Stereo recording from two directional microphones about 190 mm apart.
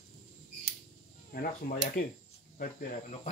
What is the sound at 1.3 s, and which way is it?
Speech, 50° left (ahead or behind).